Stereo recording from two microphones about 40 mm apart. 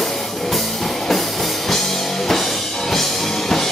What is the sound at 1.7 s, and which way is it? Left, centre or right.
Music, centre.